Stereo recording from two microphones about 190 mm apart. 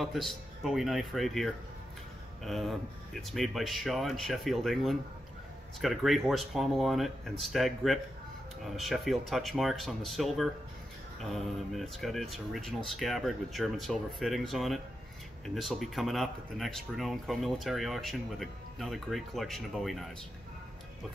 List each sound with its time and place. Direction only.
0.0 s speech: centre (ahead or behind)